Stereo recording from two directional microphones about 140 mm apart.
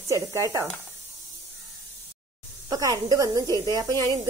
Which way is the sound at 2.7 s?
25° right (ahead or behind).